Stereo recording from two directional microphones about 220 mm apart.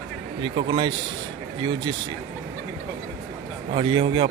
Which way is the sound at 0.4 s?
20° right (ahead or behind).